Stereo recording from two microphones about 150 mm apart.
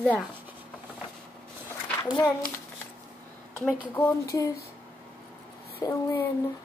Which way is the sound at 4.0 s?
20° left (ahead or behind).